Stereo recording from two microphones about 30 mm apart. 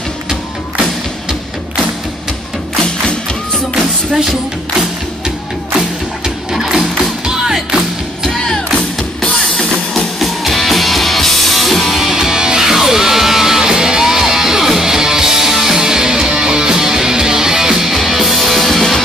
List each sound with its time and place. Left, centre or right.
6.5 s music: centre
9.9 s music: centre
12.1 s music: centre
17.9 s music: centre
18.6 s music: centre